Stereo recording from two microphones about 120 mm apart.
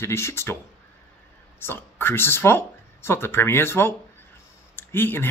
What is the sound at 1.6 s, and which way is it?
Speech, 20° left (ahead or behind).